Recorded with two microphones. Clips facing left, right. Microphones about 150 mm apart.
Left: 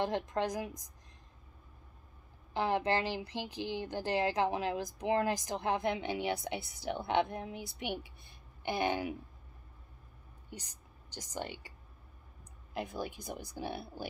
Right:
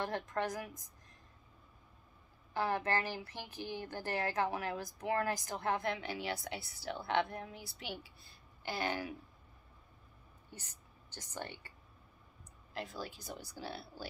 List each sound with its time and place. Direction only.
0.0 s speech: 20° left (ahead or behind)
2.5 s speech: 20° left (ahead or behind)
10.5 s a woman's voice: 15° left (ahead or behind)
12.7 s speech: 20° left (ahead or behind)